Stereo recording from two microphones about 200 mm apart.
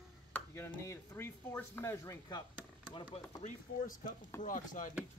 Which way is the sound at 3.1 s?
35° left (ahead or behind).